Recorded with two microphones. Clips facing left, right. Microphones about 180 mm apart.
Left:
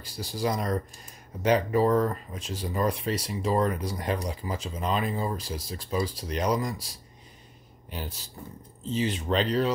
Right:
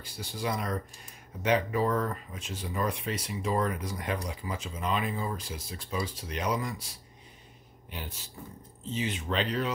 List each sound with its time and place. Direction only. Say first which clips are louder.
0.0 s speech: left 5 dB; 35° left (ahead or behind)